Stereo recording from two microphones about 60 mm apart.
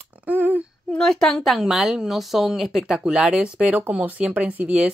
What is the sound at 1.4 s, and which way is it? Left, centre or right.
Speech, centre.